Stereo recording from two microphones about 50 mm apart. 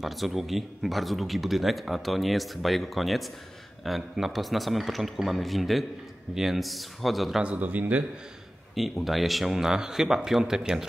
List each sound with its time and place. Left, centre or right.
0.0 s speech: centre
7.4 s speech: right
9.0 s speech: centre